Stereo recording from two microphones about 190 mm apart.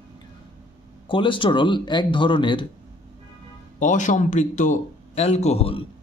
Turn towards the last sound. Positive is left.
turn(degrees=30)  # may be behind; listen again after turning